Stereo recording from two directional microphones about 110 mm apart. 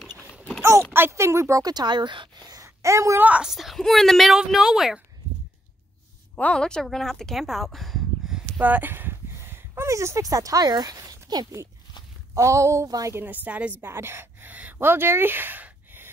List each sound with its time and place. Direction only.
0.6 s speech: 20° right (ahead or behind)
3.2 s a woman's voice: 10° right (ahead or behind)
6.3 s a woman's voice: 10° left (ahead or behind)
8.5 s speech: 15° right (ahead or behind); by 13.1 s 30° right (ahead or behind)
13.1 s a woman's voice: 15° right (ahead or behind)